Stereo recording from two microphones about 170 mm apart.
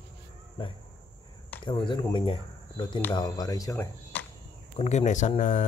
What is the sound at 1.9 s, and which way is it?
Speech, 30° left (ahead or behind).